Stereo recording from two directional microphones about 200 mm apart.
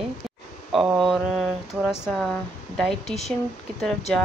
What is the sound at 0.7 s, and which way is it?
Speech, centre (ahead or behind).